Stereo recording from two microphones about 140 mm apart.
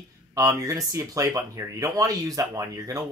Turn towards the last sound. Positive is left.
turn(degrees=-20)  # may be behind; listen again after turning